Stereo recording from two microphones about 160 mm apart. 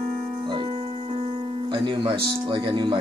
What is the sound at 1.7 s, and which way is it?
Speech, 30° right (ahead or behind).